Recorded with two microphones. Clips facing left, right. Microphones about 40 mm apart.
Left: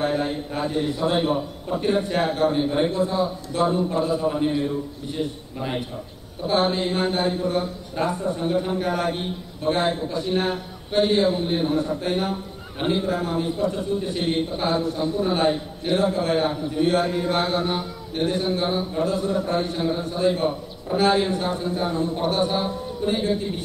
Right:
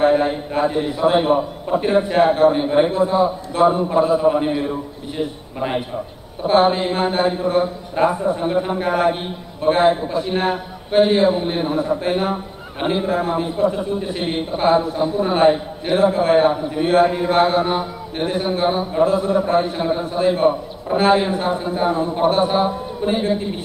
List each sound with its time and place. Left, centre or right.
0.0 s a man's voice: right